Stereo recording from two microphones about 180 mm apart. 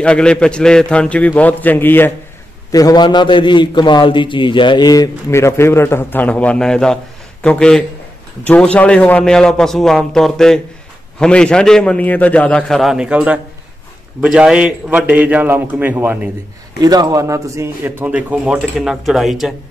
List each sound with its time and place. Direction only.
0.0 s a man's voice: 5° left (ahead or behind)
16.8 s a man's voice: 20° right (ahead or behind); by 19.5 s centre (ahead or behind)